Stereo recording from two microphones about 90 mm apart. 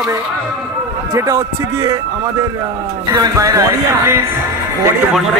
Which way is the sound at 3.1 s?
45° right (ahead or behind).